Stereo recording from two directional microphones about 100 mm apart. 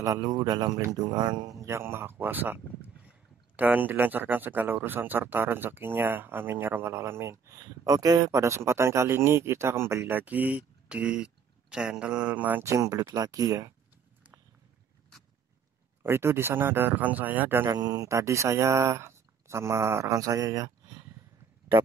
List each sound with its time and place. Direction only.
0.0 s speech: 35° right (ahead or behind); by 12.6 s 15° right (ahead or behind)
12.6 s speech: 30° right (ahead or behind)
16.0 s speech: 25° right (ahead or behind)
17.6 s speech: 40° right (ahead or behind)